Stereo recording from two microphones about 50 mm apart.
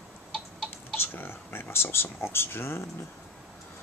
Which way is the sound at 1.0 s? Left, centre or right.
Left.